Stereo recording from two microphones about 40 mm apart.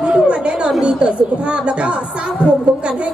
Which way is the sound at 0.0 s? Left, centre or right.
Right.